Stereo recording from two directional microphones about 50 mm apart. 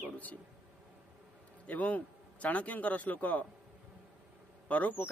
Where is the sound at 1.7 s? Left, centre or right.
Left.